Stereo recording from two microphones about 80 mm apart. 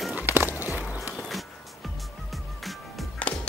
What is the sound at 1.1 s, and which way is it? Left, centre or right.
Music, centre.